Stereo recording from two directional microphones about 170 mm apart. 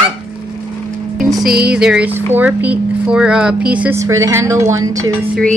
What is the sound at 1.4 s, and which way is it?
Music, 65° right (ahead or behind).